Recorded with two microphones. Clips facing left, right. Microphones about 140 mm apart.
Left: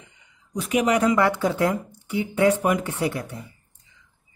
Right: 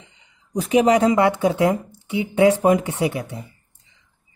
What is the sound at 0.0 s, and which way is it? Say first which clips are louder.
Speech: right 1 dB; 30° right (ahead or behind).